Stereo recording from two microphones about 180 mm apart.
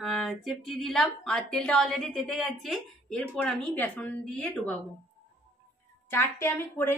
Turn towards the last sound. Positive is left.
turn(degrees=10)  # may be behind; listen again after turning